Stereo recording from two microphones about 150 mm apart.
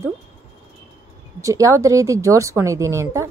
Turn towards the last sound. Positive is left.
turn(degrees=-20)  # may be behind; listen again after turning